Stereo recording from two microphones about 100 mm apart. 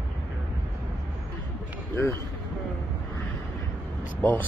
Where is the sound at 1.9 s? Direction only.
30° left (ahead or behind).